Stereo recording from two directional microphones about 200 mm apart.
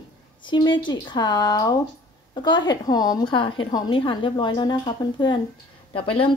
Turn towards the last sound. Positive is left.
turn(degrees=25)  # may be behind; listen again after turning